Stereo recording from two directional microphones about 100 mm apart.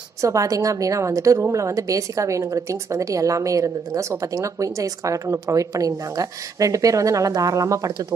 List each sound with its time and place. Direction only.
0.2 s a woman's voice: 35° right (ahead or behind)